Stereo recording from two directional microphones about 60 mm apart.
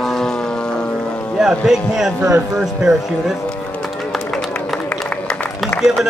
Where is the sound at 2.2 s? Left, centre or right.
Right.